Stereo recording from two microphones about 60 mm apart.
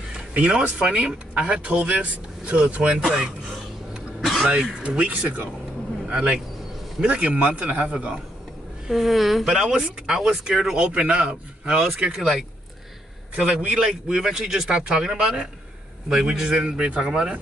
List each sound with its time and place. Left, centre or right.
0.3 s speech: right
4.2 s a sound: centre
4.5 s a man's voice: centre
8.8 s a man's voice: centre